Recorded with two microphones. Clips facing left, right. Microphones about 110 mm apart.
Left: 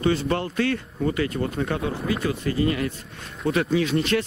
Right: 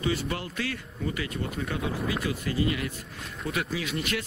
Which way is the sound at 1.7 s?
30° left (ahead or behind).